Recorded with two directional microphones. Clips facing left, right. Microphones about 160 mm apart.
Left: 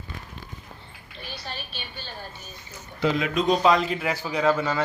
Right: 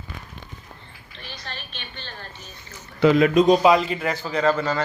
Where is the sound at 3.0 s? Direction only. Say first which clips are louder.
Right 8 dB; 60° right (ahead or behind).